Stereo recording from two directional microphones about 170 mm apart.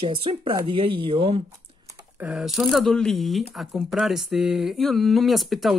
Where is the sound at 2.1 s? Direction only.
5° right (ahead or behind).